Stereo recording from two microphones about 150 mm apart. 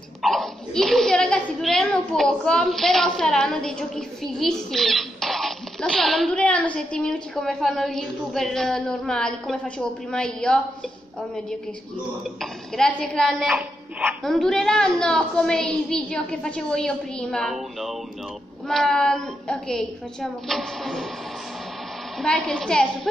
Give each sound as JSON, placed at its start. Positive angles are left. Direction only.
{"t": 0.2, "sound": "a woman's voice", "side_deg": 0}
{"t": 12.4, "sound": "a woman's voice", "side_deg": 5}
{"t": 14.2, "sound": "a woman's voice", "side_deg": 5}
{"t": 22.2, "sound": "a woman's voice", "side_deg": 5}